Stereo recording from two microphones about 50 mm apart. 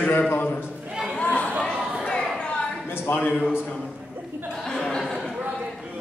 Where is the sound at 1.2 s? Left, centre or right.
Left.